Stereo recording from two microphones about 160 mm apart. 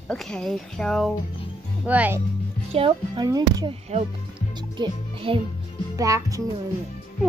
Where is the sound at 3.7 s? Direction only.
40° right (ahead or behind).